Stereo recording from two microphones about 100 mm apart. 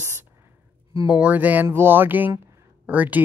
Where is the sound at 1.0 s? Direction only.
15° right (ahead or behind).